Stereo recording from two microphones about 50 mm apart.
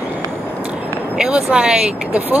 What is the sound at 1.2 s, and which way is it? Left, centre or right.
Speech, centre.